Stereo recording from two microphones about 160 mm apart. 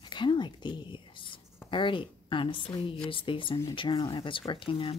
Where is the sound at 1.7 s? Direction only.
30° left (ahead or behind).